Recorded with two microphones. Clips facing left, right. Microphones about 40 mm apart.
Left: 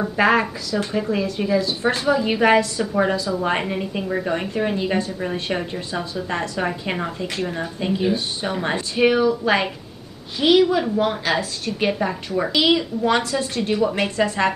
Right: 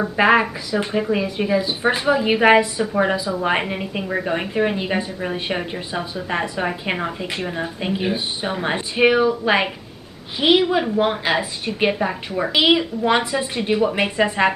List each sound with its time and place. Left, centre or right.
0.0 s speech: centre